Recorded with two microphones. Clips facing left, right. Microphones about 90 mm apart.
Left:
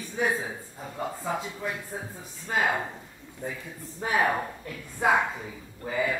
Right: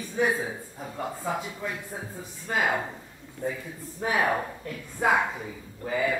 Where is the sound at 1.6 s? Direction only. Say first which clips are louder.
Left 1 dB; 15° left (ahead or behind).